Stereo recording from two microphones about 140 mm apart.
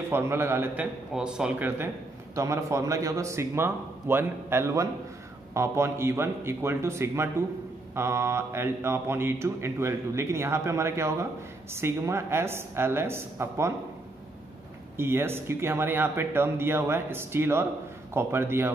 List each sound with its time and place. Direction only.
0.1 s speech: 15° right (ahead or behind)
1.1 s speech: 5° right (ahead or behind)
2.3 s speech: 20° right (ahead or behind)
15.0 s speech: 15° right (ahead or behind)